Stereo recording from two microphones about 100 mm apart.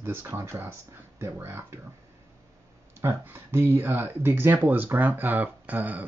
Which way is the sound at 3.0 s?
20° right (ahead or behind).